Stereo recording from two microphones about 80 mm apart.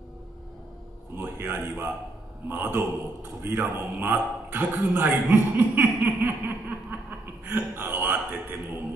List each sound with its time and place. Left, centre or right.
1.1 s a man's voice: right